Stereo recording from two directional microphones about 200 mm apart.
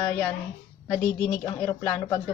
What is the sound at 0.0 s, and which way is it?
Speech, 15° left (ahead or behind).